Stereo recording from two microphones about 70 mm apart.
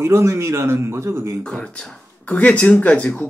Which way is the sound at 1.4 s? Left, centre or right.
Centre.